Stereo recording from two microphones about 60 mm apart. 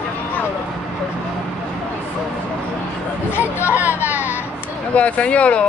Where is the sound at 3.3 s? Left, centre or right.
Left.